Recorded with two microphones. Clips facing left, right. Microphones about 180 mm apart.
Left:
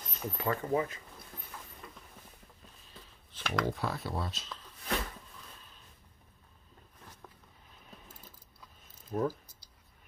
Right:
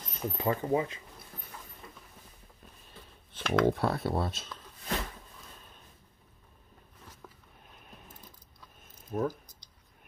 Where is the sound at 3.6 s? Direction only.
60° right (ahead or behind).